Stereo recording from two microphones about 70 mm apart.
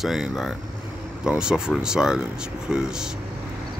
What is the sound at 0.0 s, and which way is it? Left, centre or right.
Speech, centre.